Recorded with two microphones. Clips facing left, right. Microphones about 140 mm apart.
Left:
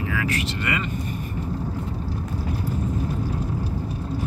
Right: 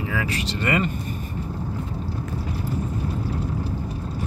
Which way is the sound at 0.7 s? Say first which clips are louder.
Right 7 dB; 40° right (ahead or behind).